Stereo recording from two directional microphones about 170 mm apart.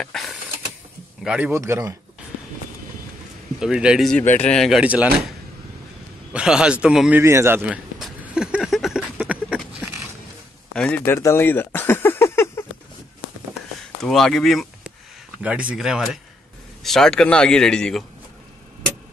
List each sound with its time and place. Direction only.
0.0 s mechanisms: centre (ahead or behind)
1.2 s speech: 5° right (ahead or behind)
1.5 s speech: 15° right (ahead or behind)
3.5 s speech: 5° right (ahead or behind)
6.3 s a sound: 5° right (ahead or behind)
10.7 s a sound: 10° left (ahead or behind)
14.0 s speech: centre (ahead or behind)